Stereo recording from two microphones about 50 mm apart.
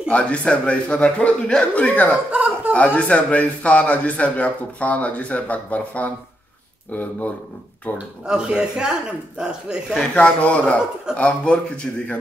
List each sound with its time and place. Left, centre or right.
0.1 s a man's voice: left
2.3 s a sound: right
2.7 s a man's voice: left
8.3 s speech: centre
9.9 s a man's voice: left